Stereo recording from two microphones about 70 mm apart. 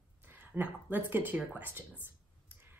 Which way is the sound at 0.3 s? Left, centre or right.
Right.